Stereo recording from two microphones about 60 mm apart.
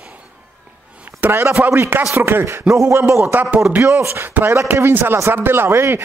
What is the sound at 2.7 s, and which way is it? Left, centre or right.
A man's voice, right.